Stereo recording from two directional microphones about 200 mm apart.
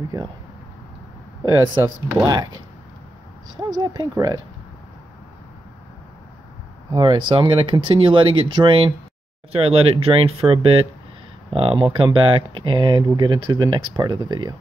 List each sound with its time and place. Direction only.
1.4 s speech: 20° right (ahead or behind)
3.7 s speech: 20° right (ahead or behind)
6.9 s speech: 25° right (ahead or behind)